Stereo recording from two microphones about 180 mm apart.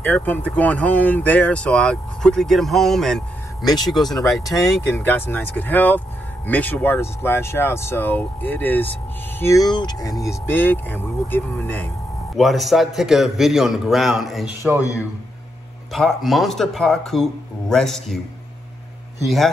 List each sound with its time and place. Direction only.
0.0 s speech: 10° left (ahead or behind)
3.6 s speech: 20° left (ahead or behind)
4.2 s a man's voice: centre (ahead or behind)
4.6 s speech: 15° left (ahead or behind)
12.4 s a man's voice: centre (ahead or behind)
15.9 s a man's voice: centre (ahead or behind)
19.2 s a man's voice: centre (ahead or behind)